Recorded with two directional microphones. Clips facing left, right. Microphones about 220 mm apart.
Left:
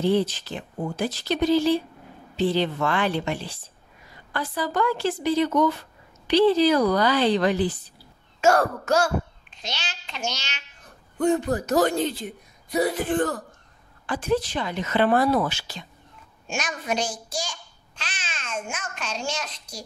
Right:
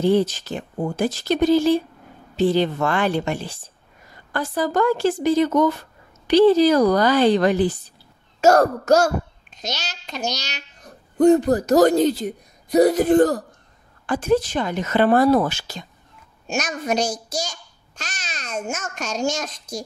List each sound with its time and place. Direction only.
0.0 s a child's voice: 45° right (ahead or behind)